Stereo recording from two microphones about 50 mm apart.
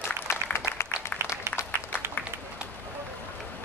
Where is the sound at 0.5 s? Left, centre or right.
Left.